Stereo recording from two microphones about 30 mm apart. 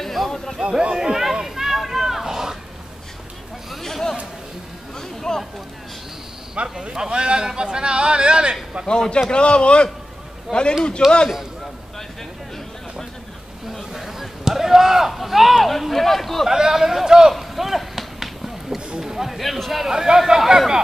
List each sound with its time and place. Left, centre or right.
0.0 s a sound: centre
0.6 s speech: right
0.9 s speech: centre
1.2 s a sound: centre
5.3 s a sound: left
6.5 s a man's voice: right
9.3 s a man's voice: left
10.5 s a man's voice: centre
13.9 s a sound: centre
15.9 s a man's voice: centre
16.4 s speech: centre
17.3 s run: centre
18.9 s speech: centre
19.9 s speech: centre